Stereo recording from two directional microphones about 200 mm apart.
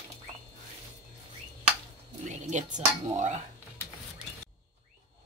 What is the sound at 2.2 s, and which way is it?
Speech, 35° right (ahead or behind).